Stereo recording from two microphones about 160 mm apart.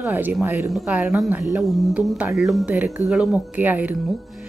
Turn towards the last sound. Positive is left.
turn(degrees=-10)  # may be behind; listen again after turning